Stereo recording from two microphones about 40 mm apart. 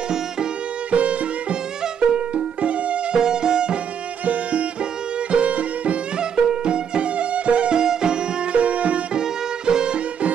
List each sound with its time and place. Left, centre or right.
0.9 s music: right
3.2 s music: centre
4.3 s music: right
5.3 s violin: right
6.3 s music: centre
8.5 s music: right
9.7 s music: centre